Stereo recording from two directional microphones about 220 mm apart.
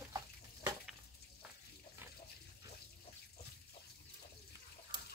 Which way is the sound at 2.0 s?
10° right (ahead or behind).